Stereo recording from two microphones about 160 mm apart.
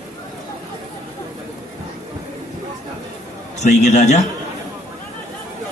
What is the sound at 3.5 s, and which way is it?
Speech, 45° left (ahead or behind).